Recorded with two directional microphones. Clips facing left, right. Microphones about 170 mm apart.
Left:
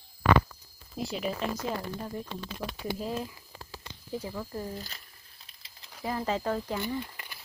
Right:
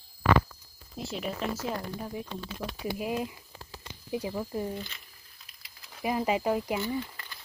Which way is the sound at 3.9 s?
15° right (ahead or behind).